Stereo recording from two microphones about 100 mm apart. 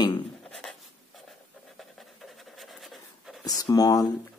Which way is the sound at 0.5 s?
5° left (ahead or behind).